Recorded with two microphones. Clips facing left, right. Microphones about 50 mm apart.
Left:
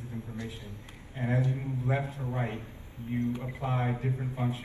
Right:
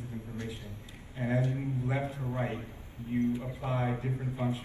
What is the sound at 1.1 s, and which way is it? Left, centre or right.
Speech, left.